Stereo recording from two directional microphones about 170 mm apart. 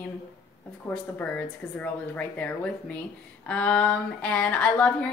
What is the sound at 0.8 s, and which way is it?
Speech, 10° left (ahead or behind).